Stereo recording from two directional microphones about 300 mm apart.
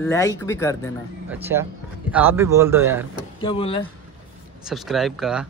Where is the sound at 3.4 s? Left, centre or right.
Centre.